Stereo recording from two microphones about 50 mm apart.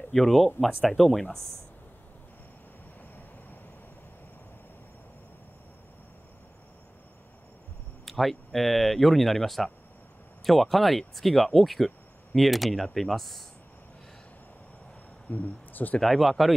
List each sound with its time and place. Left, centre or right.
0.1 s speech: centre
8.0 s speech: centre
15.2 s speech: left
16.0 s speech: centre